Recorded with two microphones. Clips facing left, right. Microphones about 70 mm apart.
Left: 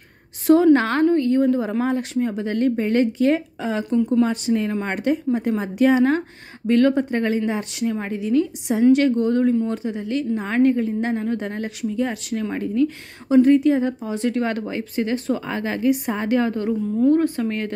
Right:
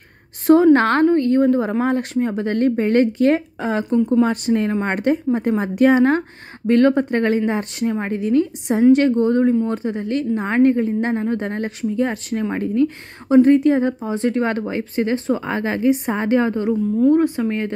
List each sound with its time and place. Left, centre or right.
0.7 s a woman's voice: right
9.8 s a woman's voice: right
14.0 s a woman's voice: right